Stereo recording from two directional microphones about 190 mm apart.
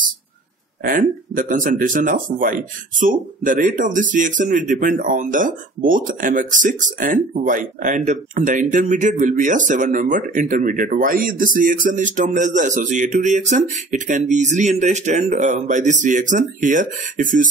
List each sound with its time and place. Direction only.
0.8 s speech: 45° right (ahead or behind)